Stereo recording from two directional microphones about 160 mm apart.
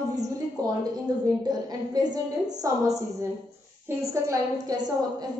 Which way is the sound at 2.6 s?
20° right (ahead or behind).